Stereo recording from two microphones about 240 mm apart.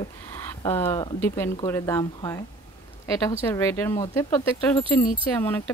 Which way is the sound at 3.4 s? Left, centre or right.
Centre.